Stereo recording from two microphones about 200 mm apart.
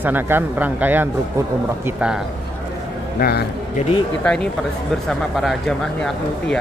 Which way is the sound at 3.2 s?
50° left (ahead or behind).